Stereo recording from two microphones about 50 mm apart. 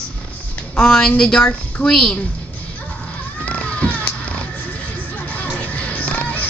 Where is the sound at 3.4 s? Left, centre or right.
Left.